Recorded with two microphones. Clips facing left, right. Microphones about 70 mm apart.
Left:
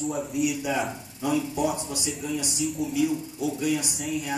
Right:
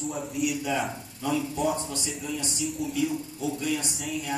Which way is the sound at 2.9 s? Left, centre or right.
Centre.